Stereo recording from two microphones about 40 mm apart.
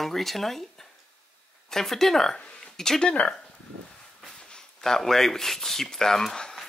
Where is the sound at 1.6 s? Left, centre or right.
Centre.